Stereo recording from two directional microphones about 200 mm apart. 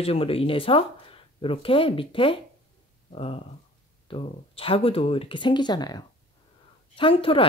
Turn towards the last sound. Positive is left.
turn(degrees=25)  # may be behind; listen again after turning